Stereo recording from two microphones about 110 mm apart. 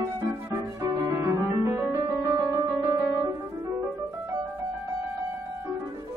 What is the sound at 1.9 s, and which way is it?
Piano, 30° right (ahead or behind).